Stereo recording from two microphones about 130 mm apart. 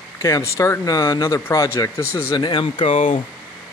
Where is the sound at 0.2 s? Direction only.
20° left (ahead or behind).